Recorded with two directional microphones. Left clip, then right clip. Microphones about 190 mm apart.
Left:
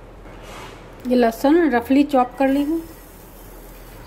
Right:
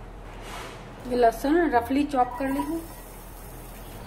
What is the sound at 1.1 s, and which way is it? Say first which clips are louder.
A woman's voice: left 5 dB; 40° left (ahead or behind).